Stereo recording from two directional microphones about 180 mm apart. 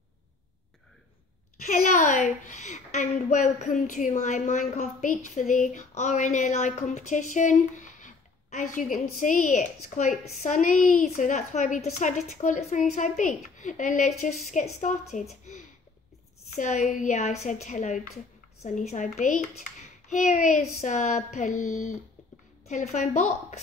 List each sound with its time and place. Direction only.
1.7 s a woman's voice: 45° left (ahead or behind)